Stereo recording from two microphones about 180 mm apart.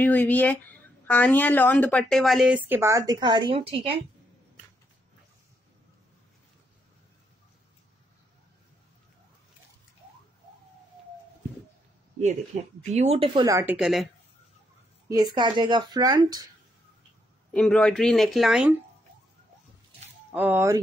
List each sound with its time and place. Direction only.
0.0 s a woman's voice: 10° left (ahead or behind); by 3.0 s 10° right (ahead or behind)
3.1 s speech: 25° right (ahead or behind)
12.5 s speech: 40° right (ahead or behind)
13.5 s speech: 15° right (ahead or behind)
15.0 s speech: 20° right (ahead or behind)
17.6 s speech: 5° left (ahead or behind)
20.3 s speech: 10° right (ahead or behind)